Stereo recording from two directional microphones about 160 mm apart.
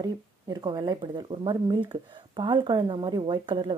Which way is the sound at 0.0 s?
25° right (ahead or behind).